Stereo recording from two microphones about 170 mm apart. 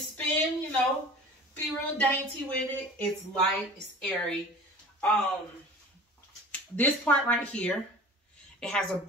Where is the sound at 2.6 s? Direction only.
10° left (ahead or behind).